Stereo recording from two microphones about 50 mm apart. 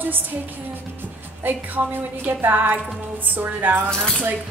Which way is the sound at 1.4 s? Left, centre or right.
Right.